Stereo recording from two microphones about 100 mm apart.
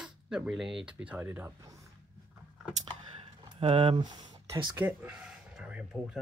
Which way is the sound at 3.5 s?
65° right (ahead or behind).